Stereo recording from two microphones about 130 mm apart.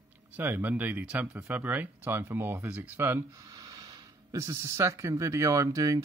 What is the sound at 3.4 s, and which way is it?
Speech, 30° right (ahead or behind).